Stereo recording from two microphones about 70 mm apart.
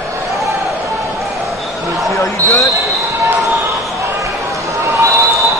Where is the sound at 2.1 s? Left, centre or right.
Left.